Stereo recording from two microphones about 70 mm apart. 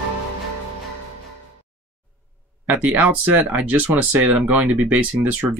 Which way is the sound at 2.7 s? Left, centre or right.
Centre.